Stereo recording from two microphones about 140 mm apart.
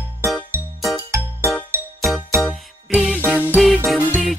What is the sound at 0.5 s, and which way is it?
Music, 15° right (ahead or behind).